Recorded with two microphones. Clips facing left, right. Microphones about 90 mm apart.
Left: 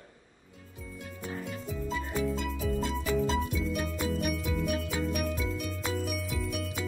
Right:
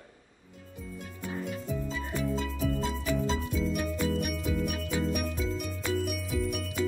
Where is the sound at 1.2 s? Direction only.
5° right (ahead or behind).